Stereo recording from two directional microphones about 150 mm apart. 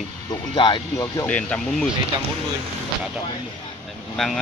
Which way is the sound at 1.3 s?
10° left (ahead or behind).